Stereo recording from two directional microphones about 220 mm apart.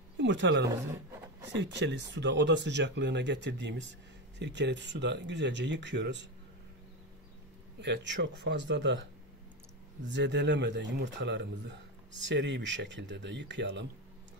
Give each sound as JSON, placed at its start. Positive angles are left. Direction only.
{"t": 0.2, "sound": "speech", "side_deg": -55}
{"t": 7.8, "sound": "speech", "side_deg": -55}
{"t": 10.0, "sound": "speech", "side_deg": -50}